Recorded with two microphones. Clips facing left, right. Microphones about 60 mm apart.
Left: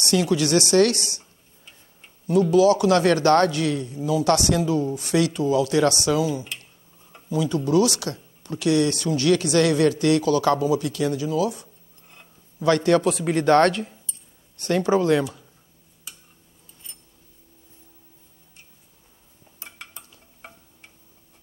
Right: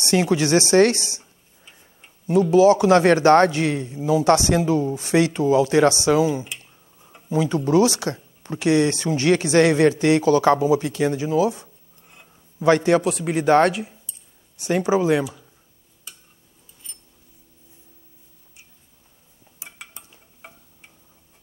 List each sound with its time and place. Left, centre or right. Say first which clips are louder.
0.0 s speech: right 2 dB; right
1.2 s tick-tock: even; centre
2.5 s speech: right 4 dB; right
6.5 s a sound: even; centre
7.2 s speech: right 2 dB; right
12.1 s a sound: right 1 dB; centre
12.6 s speech: right 2 dB; right
13.0 s speech: even; centre
19.6 s dishes: even; centre